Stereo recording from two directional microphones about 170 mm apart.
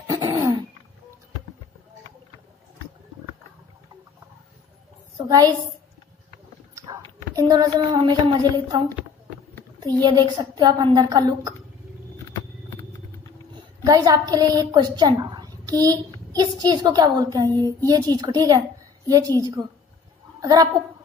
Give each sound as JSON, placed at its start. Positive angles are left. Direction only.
{"t": 0.0, "sound": "a sound", "side_deg": -25}
{"t": 5.1, "sound": "a woman's voice", "side_deg": -20}
{"t": 6.7, "sound": "a child's voice", "side_deg": -20}
{"t": 10.0, "sound": "a woman's voice", "side_deg": -25}
{"t": 12.6, "sound": "vehicle", "side_deg": 15}
{"t": 13.6, "sound": "a woman's voice", "side_deg": -20}